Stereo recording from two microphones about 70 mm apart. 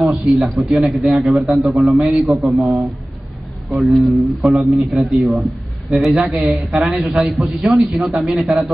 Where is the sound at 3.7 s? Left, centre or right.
Centre.